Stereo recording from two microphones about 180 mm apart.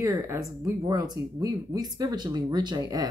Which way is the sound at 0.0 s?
15° right (ahead or behind).